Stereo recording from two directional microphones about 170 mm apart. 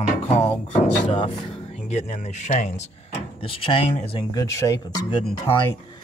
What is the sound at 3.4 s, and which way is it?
Speech, 30° left (ahead or behind).